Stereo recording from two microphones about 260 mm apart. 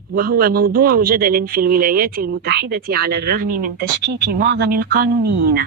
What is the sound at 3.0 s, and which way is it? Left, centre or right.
Speech, right.